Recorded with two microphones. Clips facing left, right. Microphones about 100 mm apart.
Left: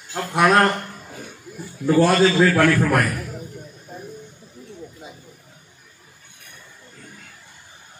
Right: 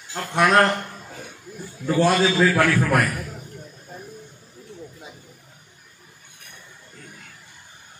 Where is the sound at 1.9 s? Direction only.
5° left (ahead or behind).